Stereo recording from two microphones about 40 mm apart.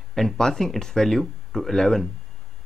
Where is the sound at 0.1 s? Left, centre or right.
Centre.